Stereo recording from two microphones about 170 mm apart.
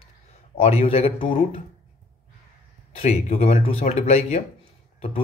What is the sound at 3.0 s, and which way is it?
A man's voice, 40° left (ahead or behind).